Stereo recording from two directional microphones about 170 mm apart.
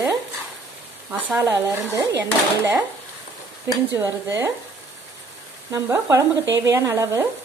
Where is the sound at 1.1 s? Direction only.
10° right (ahead or behind).